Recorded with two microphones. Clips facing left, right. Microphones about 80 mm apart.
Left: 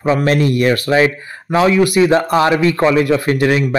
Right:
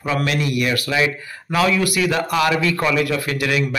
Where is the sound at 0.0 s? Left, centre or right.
Left.